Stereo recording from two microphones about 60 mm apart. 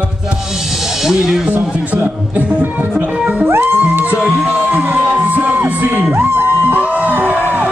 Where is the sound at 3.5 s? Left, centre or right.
Right.